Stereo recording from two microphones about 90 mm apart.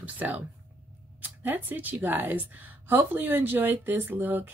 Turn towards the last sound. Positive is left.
turn(degrees=-20)  # may be behind; listen again after turning